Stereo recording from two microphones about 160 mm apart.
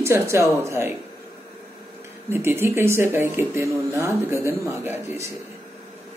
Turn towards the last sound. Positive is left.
turn(degrees=-15)  # may be behind; listen again after turning